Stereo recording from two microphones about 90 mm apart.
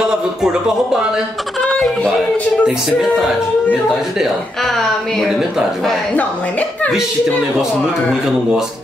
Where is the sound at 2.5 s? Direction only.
5° right (ahead or behind).